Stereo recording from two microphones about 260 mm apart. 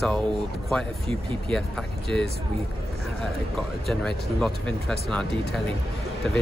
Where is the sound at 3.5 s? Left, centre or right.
Centre.